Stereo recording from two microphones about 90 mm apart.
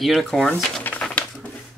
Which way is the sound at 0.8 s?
15° left (ahead or behind).